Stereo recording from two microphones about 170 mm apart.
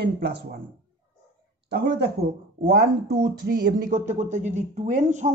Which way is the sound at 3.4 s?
55° right (ahead or behind).